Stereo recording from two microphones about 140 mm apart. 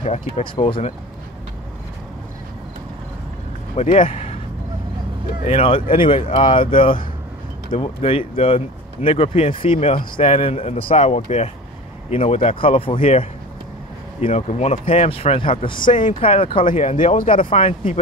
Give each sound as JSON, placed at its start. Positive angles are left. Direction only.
{"t": 0.0, "sound": "speech", "side_deg": 40}
{"t": 3.7, "sound": "a man's voice", "side_deg": 50}
{"t": 5.4, "sound": "speech", "side_deg": 45}
{"t": 13.0, "sound": "speech", "side_deg": 50}
{"t": 16.6, "sound": "speech", "side_deg": 60}
{"t": 17.3, "sound": "speech", "side_deg": 40}